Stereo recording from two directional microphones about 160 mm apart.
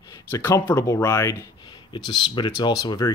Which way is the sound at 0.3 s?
20° left (ahead or behind).